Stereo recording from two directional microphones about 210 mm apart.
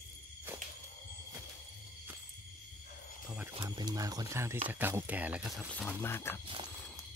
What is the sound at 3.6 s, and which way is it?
Speech, 20° right (ahead or behind).